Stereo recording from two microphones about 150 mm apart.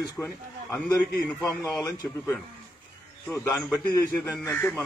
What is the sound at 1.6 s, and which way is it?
Speech, 25° left (ahead or behind).